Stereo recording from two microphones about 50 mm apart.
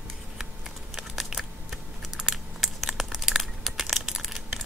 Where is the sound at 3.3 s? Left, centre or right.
Centre.